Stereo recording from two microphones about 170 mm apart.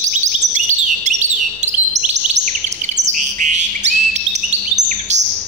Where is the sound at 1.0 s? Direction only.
45° right (ahead or behind).